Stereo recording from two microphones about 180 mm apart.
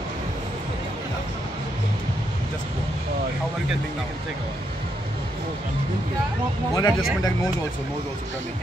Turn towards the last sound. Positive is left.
turn(degrees=20)  # may be behind; listen again after turning